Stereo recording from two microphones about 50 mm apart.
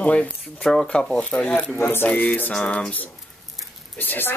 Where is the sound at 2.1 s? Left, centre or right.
Left.